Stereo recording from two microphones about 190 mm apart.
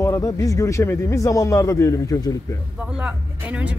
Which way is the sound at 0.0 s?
15° left (ahead or behind).